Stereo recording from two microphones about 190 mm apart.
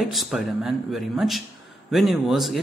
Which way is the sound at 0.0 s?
Centre (ahead or behind).